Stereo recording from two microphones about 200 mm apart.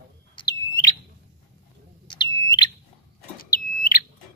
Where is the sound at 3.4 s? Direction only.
45° left (ahead or behind).